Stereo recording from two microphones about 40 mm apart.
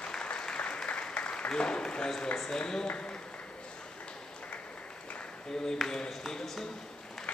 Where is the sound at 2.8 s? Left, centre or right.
Left.